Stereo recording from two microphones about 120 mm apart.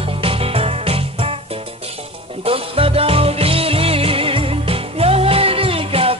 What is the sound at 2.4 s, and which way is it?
Music, 50° right (ahead or behind).